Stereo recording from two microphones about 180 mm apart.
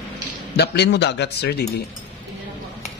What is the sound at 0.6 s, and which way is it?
Speech, 70° left (ahead or behind).